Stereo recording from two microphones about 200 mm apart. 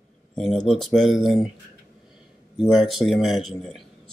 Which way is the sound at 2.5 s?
Centre (ahead or behind).